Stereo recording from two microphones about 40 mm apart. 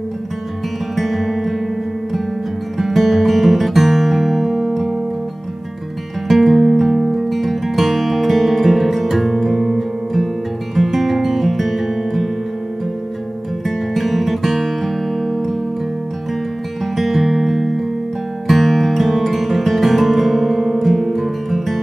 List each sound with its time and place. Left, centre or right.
0.9 s music: centre
2.8 s guitar: centre
6.2 s music: centre
13.7 s music: centre
16.9 s music: centre